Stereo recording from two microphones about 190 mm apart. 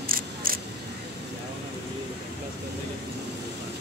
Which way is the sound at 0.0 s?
50° right (ahead or behind).